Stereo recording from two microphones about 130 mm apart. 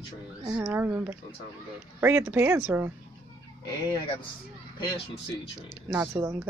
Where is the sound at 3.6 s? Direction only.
35° left (ahead or behind).